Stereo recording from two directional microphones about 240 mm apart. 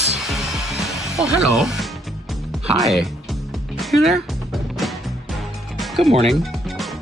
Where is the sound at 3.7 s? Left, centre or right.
Centre.